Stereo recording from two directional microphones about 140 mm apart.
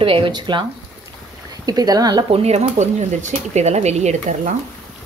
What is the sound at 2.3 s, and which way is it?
Speech, 50° right (ahead or behind).